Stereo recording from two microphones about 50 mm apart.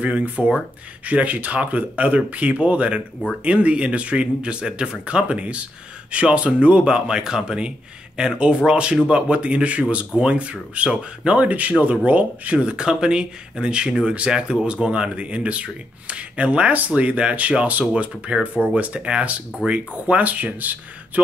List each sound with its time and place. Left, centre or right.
0.0 s speech: right